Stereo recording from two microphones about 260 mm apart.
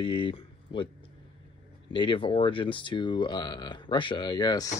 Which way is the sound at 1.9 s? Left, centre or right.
Centre.